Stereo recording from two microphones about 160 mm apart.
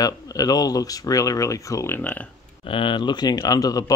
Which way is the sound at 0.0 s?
25° left (ahead or behind).